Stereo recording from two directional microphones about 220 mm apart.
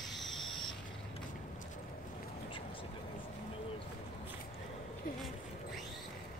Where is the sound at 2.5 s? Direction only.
25° left (ahead or behind).